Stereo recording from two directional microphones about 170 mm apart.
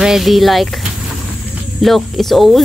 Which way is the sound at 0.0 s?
Centre (ahead or behind).